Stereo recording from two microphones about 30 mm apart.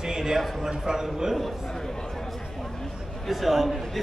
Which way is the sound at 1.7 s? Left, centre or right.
Centre.